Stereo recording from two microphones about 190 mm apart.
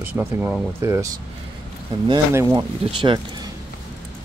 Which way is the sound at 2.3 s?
15° right (ahead or behind).